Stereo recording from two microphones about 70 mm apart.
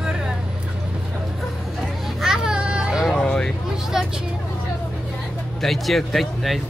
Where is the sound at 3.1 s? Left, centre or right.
Centre.